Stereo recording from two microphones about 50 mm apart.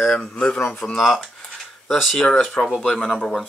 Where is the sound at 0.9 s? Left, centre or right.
Centre.